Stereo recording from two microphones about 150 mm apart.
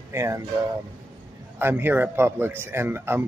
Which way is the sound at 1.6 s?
15° right (ahead or behind).